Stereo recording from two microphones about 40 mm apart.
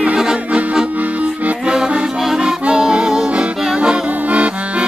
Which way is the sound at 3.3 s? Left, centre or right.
Right.